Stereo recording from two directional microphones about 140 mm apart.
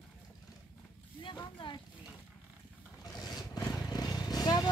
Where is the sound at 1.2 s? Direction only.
35° left (ahead or behind).